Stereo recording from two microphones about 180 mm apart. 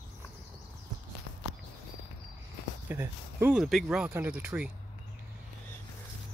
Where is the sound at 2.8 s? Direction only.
10° right (ahead or behind).